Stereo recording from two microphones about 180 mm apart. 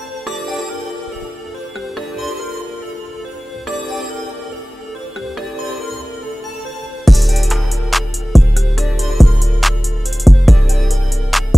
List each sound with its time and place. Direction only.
2.0 s music: centre (ahead or behind)
3.6 s music: centre (ahead or behind)
7.1 s music: centre (ahead or behind)